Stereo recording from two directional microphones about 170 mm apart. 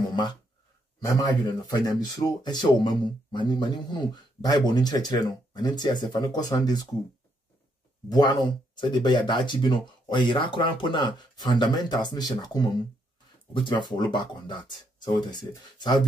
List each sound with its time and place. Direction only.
0.1 s speech: 25° left (ahead or behind)
8.1 s speech: 25° left (ahead or behind)